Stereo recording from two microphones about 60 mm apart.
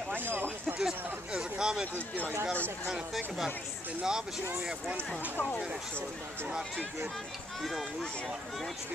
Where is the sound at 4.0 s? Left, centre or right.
Centre.